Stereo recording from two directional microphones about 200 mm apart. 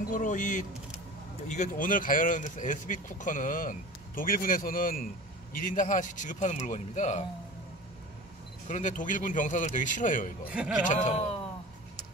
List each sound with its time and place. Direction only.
0.1 s speech: 40° left (ahead or behind)
8.6 s speech: 40° left (ahead or behind)
10.5 s speech: 5° right (ahead or behind)
10.9 s speech: 35° left (ahead or behind)